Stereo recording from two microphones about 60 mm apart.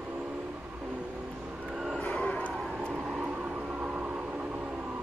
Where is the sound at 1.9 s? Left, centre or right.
Centre.